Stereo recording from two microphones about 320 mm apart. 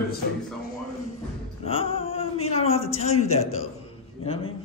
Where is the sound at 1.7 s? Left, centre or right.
Centre.